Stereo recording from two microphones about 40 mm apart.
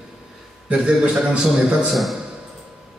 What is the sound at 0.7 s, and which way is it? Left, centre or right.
A man's voice, right.